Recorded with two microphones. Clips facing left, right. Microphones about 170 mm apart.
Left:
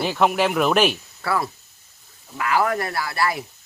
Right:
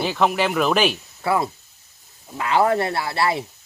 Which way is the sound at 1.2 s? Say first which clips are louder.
Right 3 dB; 20° right (ahead or behind).